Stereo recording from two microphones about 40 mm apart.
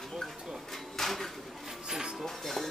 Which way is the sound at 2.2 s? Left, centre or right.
Centre.